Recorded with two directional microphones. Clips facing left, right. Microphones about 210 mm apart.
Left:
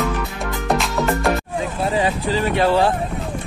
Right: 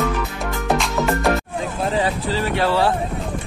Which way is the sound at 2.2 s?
20° left (ahead or behind).